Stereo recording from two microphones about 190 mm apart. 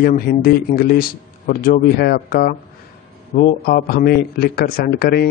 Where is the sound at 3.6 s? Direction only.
50° left (ahead or behind).